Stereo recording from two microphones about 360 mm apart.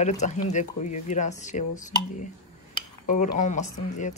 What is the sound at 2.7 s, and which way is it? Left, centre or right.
Dishes, centre.